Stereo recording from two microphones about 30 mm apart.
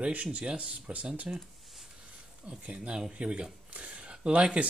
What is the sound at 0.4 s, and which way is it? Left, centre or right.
Speech, right.